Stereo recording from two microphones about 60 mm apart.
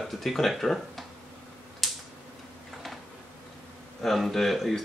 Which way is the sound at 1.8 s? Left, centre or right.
Centre.